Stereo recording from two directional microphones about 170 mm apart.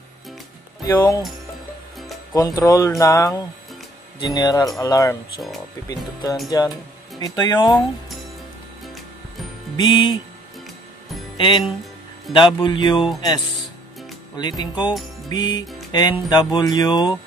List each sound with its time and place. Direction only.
0.8 s speech: 20° left (ahead or behind)
2.3 s speech: 20° left (ahead or behind)
6.5 s speech: 20° left (ahead or behind)
9.8 s speech: 30° left (ahead or behind)
11.3 s speech: 30° left (ahead or behind)
14.3 s speech: 25° left (ahead or behind)